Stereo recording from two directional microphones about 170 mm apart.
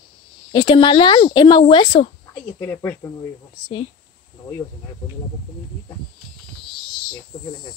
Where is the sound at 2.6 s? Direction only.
15° left (ahead or behind).